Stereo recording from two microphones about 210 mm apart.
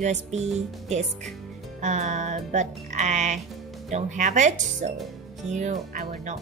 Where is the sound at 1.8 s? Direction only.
35° right (ahead or behind).